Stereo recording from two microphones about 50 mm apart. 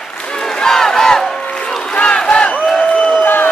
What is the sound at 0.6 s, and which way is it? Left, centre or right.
Crowd, centre.